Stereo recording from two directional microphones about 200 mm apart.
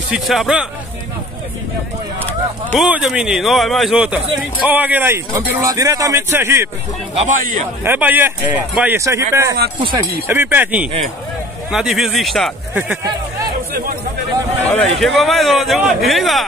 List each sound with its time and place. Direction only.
0.1 s speech: centre (ahead or behind)
2.8 s speech: centre (ahead or behind)
7.2 s a man's voice: 40° right (ahead or behind)
7.8 s speech: 10° right (ahead or behind)
14.7 s speech: centre (ahead or behind)